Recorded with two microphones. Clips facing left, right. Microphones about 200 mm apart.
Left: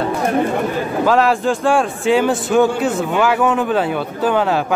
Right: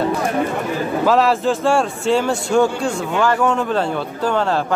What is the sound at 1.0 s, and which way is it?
A man's voice, centre (ahead or behind).